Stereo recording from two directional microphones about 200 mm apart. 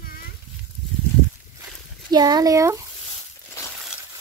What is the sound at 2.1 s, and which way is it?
Speech, 20° right (ahead or behind).